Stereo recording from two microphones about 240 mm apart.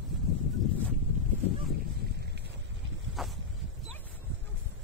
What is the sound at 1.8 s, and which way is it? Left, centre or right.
Boat, right.